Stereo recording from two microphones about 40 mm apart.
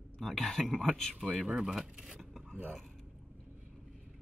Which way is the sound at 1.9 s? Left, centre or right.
Centre.